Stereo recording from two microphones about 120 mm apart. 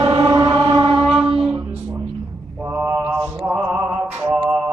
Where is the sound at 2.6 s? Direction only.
20° right (ahead or behind).